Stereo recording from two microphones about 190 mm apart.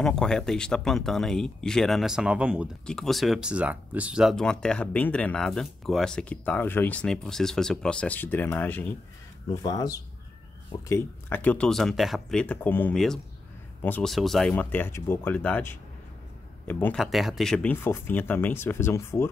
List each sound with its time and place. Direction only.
0.0 s speech: 5° left (ahead or behind)